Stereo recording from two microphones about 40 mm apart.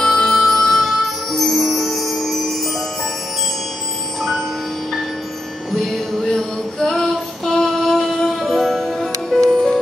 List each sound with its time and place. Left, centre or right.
0.0 s music: centre
4.2 s tubular bells: centre
5.7 s music: centre
6.2 s music: centre